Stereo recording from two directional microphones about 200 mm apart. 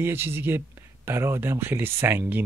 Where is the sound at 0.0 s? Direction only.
10° right (ahead or behind).